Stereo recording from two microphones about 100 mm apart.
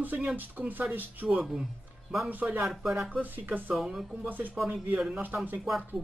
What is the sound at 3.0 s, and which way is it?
Speech, 15° right (ahead or behind).